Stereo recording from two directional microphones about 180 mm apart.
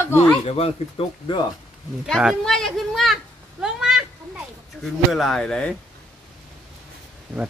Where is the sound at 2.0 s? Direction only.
Centre (ahead or behind).